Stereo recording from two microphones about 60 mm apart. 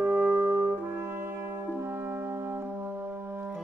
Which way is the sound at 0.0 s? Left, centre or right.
Right.